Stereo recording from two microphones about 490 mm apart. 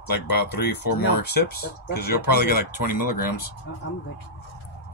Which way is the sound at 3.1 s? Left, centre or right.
Left.